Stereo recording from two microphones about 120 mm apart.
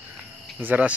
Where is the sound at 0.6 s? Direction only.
15° right (ahead or behind).